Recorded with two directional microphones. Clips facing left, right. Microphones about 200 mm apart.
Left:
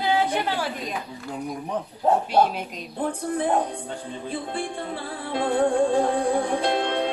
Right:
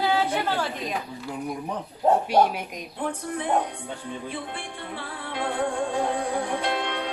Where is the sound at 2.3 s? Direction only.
10° right (ahead or behind).